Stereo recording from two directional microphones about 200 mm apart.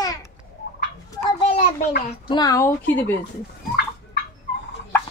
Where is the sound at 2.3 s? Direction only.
20° left (ahead or behind).